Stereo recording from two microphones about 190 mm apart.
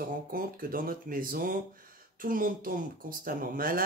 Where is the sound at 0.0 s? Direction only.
50° right (ahead or behind).